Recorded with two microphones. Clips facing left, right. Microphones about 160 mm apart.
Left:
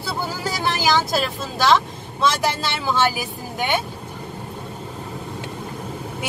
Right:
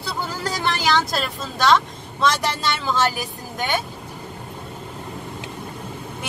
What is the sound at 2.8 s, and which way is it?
Speech, 5° left (ahead or behind).